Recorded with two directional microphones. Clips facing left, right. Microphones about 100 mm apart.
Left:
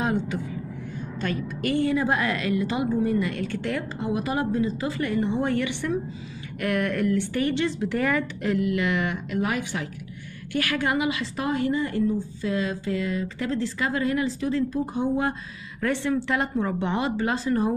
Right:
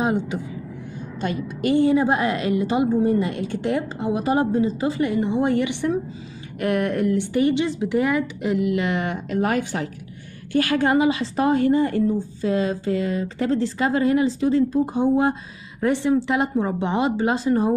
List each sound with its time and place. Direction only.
0.0 s a woman's voice: 20° right (ahead or behind)
8.7 s a woman's voice: 30° right (ahead or behind)